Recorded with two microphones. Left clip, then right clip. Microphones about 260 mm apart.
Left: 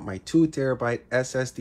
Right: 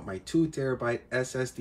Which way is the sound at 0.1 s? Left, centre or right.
Centre.